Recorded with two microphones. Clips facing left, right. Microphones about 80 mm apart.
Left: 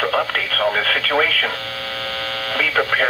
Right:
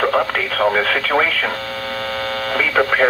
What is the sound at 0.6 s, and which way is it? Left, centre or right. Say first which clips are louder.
Speech: right 3 dB; right.